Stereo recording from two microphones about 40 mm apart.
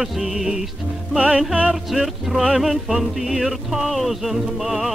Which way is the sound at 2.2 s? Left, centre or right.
Centre.